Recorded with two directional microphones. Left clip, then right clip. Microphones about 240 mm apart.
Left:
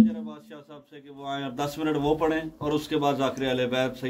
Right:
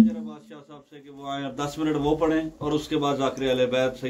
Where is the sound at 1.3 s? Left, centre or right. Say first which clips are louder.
Even; left.